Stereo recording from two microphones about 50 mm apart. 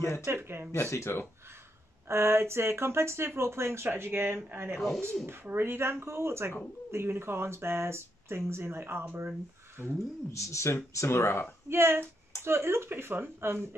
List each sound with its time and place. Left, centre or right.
0.2 s speech: right
0.7 s speech: left
2.0 s speech: right
4.7 s speech: centre
5.2 s speech: right
10.3 s speech: left
11.1 s a woman's voice: left
11.7 s speech: right